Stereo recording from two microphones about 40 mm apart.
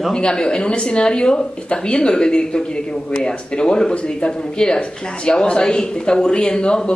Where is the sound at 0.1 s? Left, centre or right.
Left.